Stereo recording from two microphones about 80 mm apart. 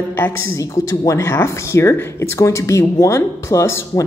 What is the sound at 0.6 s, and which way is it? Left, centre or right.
A woman's voice, left.